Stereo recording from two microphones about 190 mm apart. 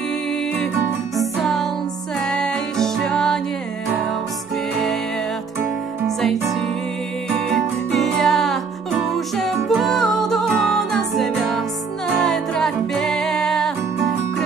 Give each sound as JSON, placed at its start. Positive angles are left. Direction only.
{"t": 1.1, "sound": "music", "side_deg": 0}
{"t": 7.4, "sound": "music", "side_deg": 0}